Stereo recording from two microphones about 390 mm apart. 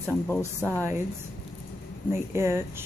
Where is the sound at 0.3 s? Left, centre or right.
Centre.